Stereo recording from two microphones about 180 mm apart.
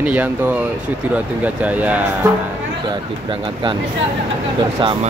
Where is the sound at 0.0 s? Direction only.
10° right (ahead or behind).